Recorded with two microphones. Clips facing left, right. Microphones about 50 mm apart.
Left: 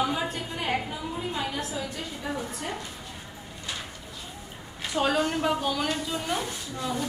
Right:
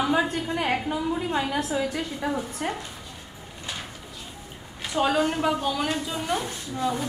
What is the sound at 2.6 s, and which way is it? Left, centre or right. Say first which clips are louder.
Speech: right 7 dB; right.